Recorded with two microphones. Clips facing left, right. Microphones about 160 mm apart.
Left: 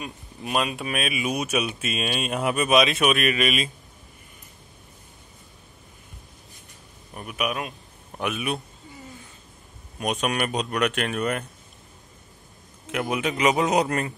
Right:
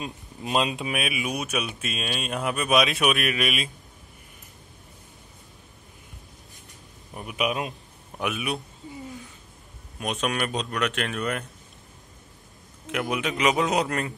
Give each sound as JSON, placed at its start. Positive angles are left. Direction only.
{"t": 0.0, "sound": "speech", "side_deg": -25}
{"t": 7.2, "sound": "a man's voice", "side_deg": -20}
{"t": 8.2, "sound": "speech", "side_deg": 0}
{"t": 10.2, "sound": "speech", "side_deg": 5}
{"t": 13.1, "sound": "speech", "side_deg": 0}